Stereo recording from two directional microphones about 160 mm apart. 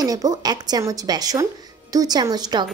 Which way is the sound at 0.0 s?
25° right (ahead or behind).